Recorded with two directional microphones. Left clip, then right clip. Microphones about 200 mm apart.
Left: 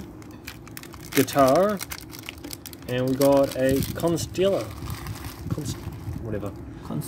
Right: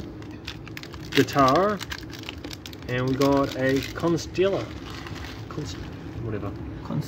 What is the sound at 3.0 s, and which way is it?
Speech, 20° left (ahead or behind).